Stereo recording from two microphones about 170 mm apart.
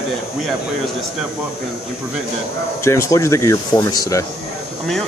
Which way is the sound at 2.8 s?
15° left (ahead or behind).